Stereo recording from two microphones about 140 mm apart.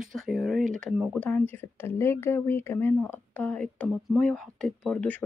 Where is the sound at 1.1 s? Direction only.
10° left (ahead or behind).